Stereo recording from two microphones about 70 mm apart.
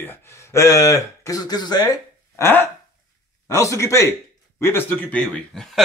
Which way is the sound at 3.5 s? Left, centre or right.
Left.